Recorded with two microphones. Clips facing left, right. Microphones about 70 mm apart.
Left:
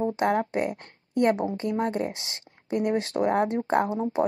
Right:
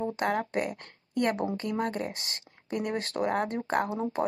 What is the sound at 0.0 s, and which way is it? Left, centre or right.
A woman's voice, left.